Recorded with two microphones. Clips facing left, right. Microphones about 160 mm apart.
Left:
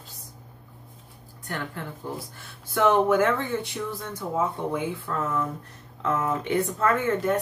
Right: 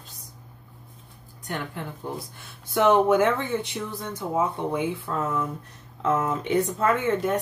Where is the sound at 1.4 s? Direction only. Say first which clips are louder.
Right 1 dB; 20° right (ahead or behind).